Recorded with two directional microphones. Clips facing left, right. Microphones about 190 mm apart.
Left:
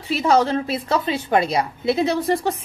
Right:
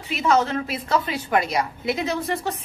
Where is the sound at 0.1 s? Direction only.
35° left (ahead or behind).